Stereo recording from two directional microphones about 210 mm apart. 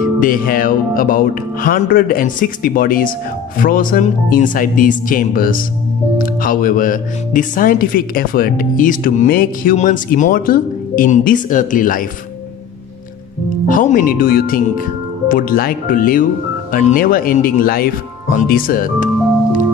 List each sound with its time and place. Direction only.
0.2 s speech: 40° left (ahead or behind)
13.7 s speech: 40° left (ahead or behind)